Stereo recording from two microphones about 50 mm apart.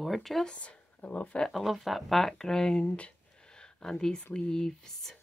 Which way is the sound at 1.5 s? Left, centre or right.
Centre.